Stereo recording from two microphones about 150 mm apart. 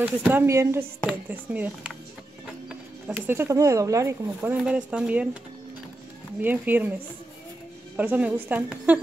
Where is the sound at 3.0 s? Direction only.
15° right (ahead or behind).